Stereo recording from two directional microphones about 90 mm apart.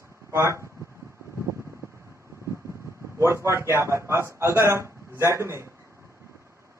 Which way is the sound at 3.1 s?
30° right (ahead or behind).